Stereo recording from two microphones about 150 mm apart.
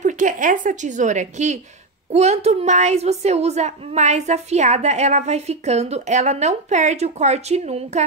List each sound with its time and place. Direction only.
0.0 s a woman's voice: 60° right (ahead or behind)